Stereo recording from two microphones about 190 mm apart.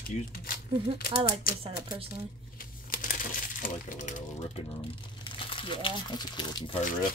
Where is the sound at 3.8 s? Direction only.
40° left (ahead or behind).